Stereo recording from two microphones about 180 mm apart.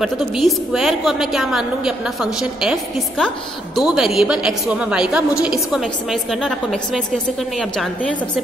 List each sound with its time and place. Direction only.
0.0 s a woman's voice: centre (ahead or behind)